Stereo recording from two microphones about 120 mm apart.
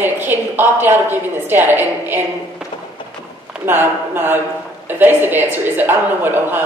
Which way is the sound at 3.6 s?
20° right (ahead or behind).